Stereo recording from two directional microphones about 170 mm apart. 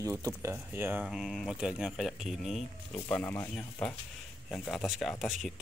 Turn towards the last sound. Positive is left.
turn(degrees=0)  # may be behind; listen again after turning